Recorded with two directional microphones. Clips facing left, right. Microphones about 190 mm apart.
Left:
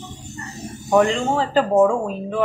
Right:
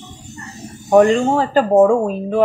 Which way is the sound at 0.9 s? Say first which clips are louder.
Right 5 dB; 40° right (ahead or behind).